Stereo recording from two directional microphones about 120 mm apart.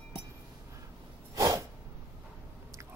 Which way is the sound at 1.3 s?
25° right (ahead or behind).